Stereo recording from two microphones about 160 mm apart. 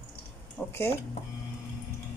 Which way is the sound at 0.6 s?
15° left (ahead or behind).